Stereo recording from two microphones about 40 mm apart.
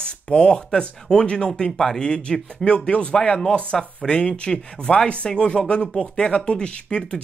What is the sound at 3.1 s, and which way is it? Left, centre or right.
Speech, centre.